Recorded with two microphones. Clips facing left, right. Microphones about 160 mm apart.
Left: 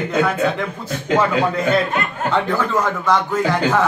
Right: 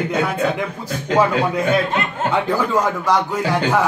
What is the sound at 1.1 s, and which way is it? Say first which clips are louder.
Speech: even; 10° right (ahead or behind).